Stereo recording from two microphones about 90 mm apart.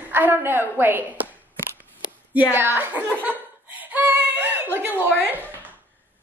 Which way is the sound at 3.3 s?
20° right (ahead or behind).